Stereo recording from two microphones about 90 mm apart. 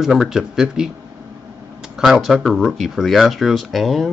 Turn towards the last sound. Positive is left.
turn(degrees=0)  # may be behind; listen again after turning